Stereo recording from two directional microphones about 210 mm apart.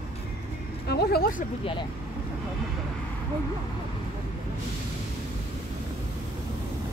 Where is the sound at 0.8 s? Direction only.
50° left (ahead or behind).